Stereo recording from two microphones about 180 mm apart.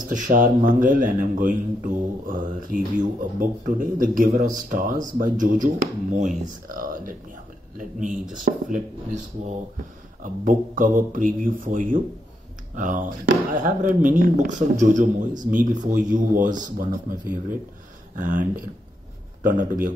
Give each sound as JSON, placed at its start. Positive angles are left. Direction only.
{"t": 0.1, "sound": "a man's voice", "side_deg": -45}
{"t": 10.2, "sound": "a man's voice", "side_deg": -45}